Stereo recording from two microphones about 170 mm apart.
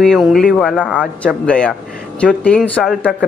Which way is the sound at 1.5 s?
5° left (ahead or behind).